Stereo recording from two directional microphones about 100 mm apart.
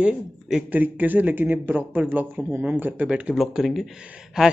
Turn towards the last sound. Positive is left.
turn(degrees=-10)  # may be behind; listen again after turning